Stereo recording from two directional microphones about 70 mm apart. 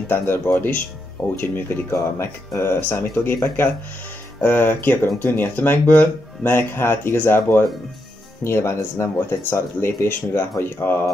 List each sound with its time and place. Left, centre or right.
0.1 s speech: left
4.4 s speech: left